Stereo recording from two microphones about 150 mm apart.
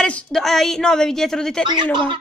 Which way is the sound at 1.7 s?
30° right (ahead or behind).